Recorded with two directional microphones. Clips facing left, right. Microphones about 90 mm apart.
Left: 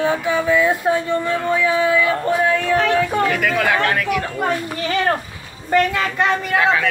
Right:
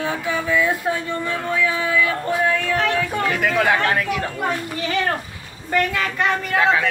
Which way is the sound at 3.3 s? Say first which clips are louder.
Even; 25° right (ahead or behind).